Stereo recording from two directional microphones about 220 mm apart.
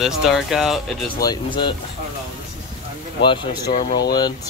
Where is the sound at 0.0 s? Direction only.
Centre (ahead or behind).